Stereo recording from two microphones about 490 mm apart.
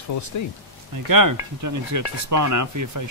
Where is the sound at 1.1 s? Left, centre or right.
Right.